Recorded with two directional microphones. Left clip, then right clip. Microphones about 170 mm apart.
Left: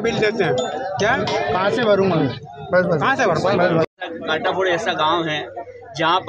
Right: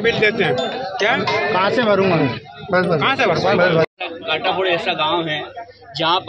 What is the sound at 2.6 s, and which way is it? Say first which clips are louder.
Speech: even; 50° right (ahead or behind).